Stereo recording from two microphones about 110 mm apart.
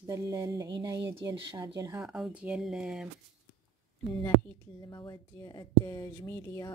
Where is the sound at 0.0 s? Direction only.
30° right (ahead or behind).